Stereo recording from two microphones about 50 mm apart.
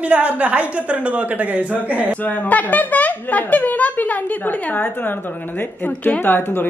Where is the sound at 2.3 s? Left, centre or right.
Left.